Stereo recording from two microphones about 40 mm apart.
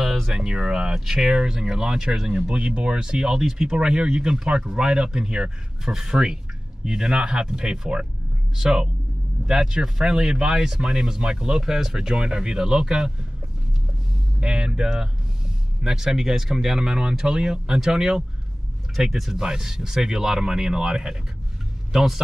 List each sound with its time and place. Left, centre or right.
0.3 s speech: centre
12.2 s speech: right
14.4 s speech: right
21.9 s a man's voice: centre